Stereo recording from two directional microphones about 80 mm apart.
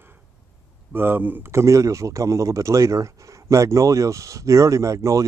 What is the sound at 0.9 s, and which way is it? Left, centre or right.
A man's voice, right.